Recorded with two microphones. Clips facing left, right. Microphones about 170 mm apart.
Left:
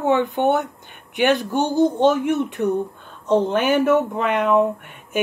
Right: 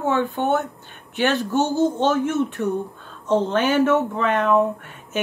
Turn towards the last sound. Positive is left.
turn(degrees=15)  # may be behind; listen again after turning